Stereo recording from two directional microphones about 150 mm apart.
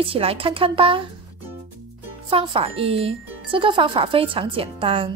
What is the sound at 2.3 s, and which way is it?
Speech, 35° right (ahead or behind).